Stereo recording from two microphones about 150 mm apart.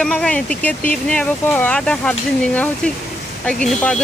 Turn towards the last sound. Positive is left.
turn(degrees=5)  # may be behind; listen again after turning